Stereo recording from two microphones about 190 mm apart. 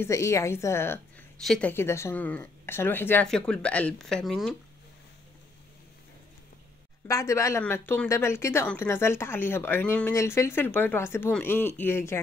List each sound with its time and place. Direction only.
0.0 s speech: 15° left (ahead or behind)
7.1 s speech: 15° left (ahead or behind)